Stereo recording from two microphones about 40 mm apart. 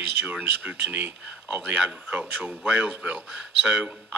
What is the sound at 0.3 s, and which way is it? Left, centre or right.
Speech, right.